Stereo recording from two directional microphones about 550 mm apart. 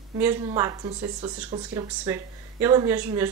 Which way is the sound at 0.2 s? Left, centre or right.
Centre.